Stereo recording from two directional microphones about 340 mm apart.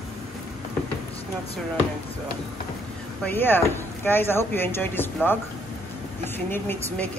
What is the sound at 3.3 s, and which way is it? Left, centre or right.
Speech, centre.